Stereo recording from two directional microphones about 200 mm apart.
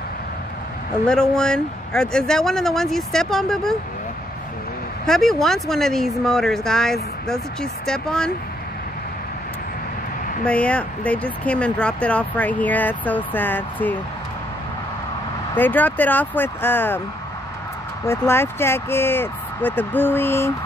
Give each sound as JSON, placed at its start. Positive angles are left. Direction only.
{"t": 1.0, "sound": "a woman's voice", "side_deg": 5}
{"t": 5.0, "sound": "a woman's voice", "side_deg": 0}
{"t": 10.4, "sound": "speech", "side_deg": 5}
{"t": 15.5, "sound": "speech", "side_deg": 10}
{"t": 18.0, "sound": "speech", "side_deg": 10}